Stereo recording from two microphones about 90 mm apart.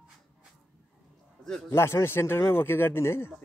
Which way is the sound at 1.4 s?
5° left (ahead or behind).